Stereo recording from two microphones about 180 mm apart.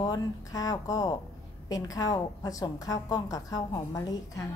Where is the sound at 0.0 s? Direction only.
20° left (ahead or behind).